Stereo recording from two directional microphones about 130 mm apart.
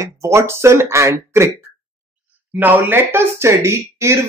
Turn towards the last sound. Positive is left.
turn(degrees=-20)  # may be behind; listen again after turning